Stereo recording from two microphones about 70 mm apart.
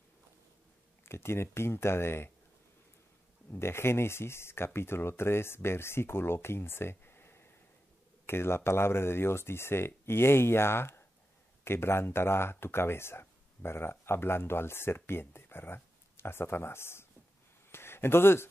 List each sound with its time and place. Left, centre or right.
1.0 s speech: left
3.5 s speech: left
17.6 s a sound: left